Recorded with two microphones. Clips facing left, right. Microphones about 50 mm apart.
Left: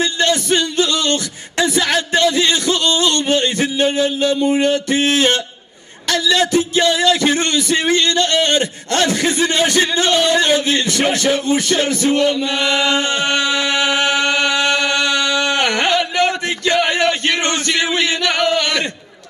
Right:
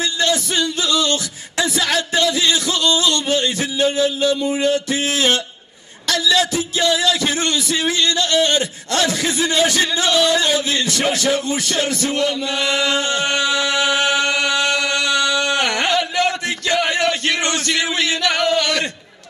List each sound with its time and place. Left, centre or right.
0.0 s music: left
0.7 s a sound: left
6.0 s a man's voice: left
13.5 s chant: left
16.2 s chant: left
16.8 s a sound: left